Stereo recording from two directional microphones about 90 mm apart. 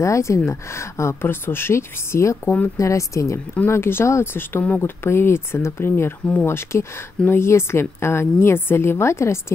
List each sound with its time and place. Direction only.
0.0 s a woman's voice: 35° left (ahead or behind)